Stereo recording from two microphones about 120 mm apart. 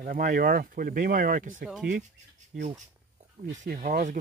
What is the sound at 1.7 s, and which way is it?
Speech, 5° right (ahead or behind).